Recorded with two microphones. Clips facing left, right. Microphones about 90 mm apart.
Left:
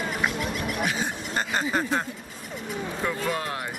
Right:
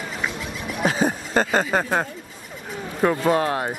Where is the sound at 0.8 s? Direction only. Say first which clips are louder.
Right 7 dB; 40° right (ahead or behind).